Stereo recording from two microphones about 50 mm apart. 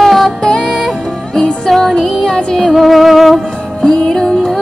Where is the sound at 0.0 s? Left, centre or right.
Centre.